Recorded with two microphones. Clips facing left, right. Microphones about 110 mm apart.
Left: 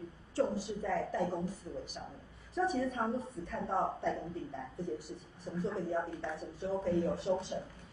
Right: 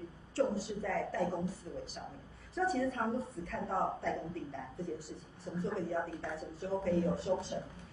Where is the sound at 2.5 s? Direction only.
20° left (ahead or behind).